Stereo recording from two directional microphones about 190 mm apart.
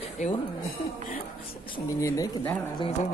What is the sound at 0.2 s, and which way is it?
Speech, 40° left (ahead or behind).